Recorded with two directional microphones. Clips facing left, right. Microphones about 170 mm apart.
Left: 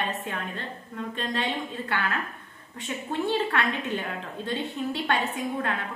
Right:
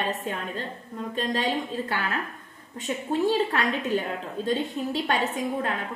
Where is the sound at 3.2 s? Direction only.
40° right (ahead or behind).